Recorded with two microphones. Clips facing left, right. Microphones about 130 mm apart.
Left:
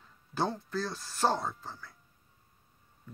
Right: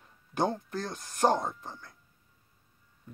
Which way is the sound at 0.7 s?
50° right (ahead or behind).